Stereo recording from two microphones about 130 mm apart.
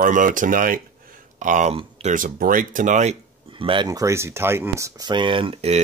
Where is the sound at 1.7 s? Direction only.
45° right (ahead or behind).